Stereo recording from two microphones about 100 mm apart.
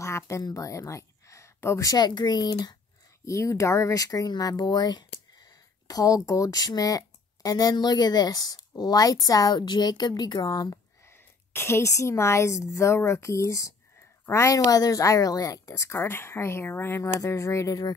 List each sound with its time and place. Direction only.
0.0 s a woman's voice: 30° left (ahead or behind)
3.3 s speech: 30° left (ahead or behind)
11.5 s a woman's voice: 25° left (ahead or behind)